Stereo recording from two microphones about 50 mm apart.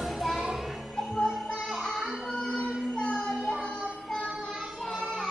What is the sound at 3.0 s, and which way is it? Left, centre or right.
Music, left.